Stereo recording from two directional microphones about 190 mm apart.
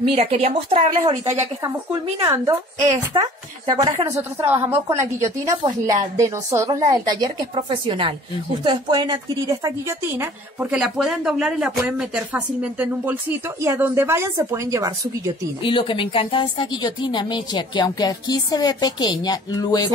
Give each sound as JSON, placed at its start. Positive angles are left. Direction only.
{"t": 0.1, "sound": "a woman's voice", "side_deg": -30}
{"t": 2.2, "sound": "a woman's voice", "side_deg": -15}
{"t": 15.6, "sound": "a woman's voice", "side_deg": 25}